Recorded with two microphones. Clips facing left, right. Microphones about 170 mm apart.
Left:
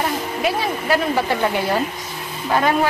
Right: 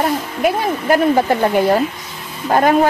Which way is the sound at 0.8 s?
50° right (ahead or behind).